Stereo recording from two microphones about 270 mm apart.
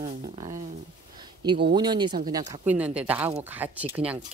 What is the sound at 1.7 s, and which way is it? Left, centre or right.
Speech, centre.